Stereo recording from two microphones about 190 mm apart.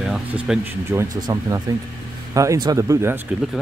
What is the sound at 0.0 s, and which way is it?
Speech, 5° right (ahead or behind).